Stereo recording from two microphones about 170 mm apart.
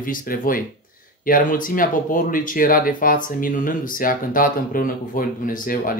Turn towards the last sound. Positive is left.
turn(degrees=55)  # may be behind; listen again after turning